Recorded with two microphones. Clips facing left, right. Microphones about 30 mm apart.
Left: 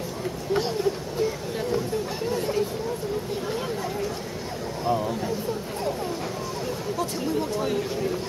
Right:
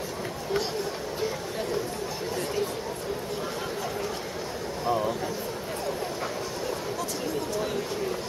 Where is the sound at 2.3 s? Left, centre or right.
Centre.